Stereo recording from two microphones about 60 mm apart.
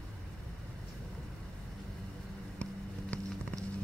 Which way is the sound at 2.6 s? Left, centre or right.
Centre.